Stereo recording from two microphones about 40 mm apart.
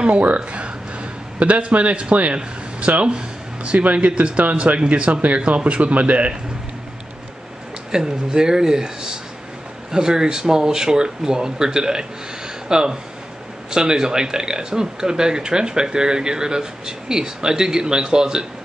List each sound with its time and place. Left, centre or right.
0.0 s speech: right
3.2 s a sound: right
3.8 s speech: right
7.9 s speech: centre